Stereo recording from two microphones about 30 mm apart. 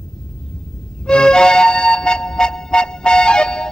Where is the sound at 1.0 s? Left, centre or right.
Left.